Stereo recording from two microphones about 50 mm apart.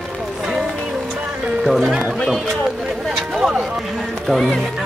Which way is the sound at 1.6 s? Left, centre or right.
Centre.